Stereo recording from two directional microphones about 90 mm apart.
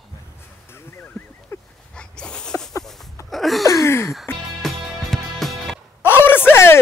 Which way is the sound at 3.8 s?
35° left (ahead or behind).